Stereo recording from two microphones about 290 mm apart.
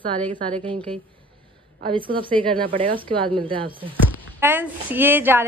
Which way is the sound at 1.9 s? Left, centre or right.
Centre.